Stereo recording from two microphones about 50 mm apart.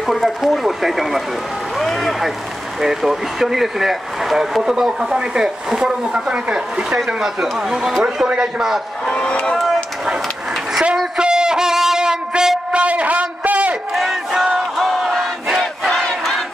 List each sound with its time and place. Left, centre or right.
0.0 s speech: centre
8.3 s speech: centre
9.1 s vehicle: centre
10.7 s a sound: centre
12.8 s a sound: right
13.9 s battle cry: centre
16.1 s crowd: centre